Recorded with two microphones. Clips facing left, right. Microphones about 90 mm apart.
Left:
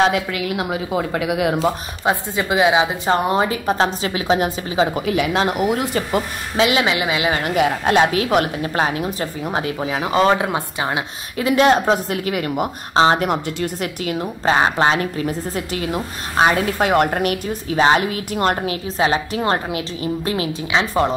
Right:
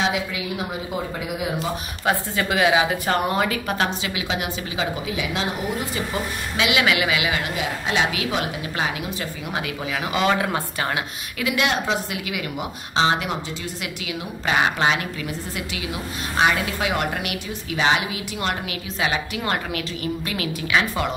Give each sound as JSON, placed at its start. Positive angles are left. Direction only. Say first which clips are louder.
{"t": 0.0, "sound": "a woman's voice", "louder": "left 6 dB", "side_deg": 55}
{"t": 0.5, "sound": "speech", "louder": "left 6 dB", "side_deg": 80}
{"t": 2.0, "sound": "a woman's voice", "louder": "left 3 dB", "side_deg": 20}
{"t": 5.0, "sound": "a woman's voice", "louder": "left 8 dB", "side_deg": 55}
{"t": 5.5, "sound": "speech", "louder": "left 7 dB", "side_deg": 90}
{"t": 6.5, "sound": "speech", "louder": "left 4 dB", "side_deg": 35}
{"t": 7.5, "sound": "a woman's voice", "louder": "left 8 dB", "side_deg": 55}
{"t": 11.3, "sound": "speech", "louder": "left 8 dB", "side_deg": 35}